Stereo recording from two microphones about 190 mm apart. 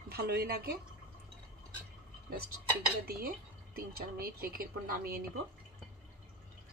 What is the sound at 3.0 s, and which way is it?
Speech, 50° right (ahead or behind).